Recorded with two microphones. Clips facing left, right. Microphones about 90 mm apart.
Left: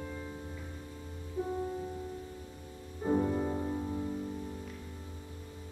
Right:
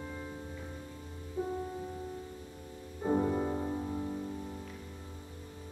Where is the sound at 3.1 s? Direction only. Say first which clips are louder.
Even; 10° right (ahead or behind).